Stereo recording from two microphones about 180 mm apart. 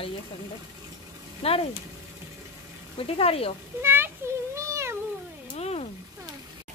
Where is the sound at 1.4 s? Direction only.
35° left (ahead or behind).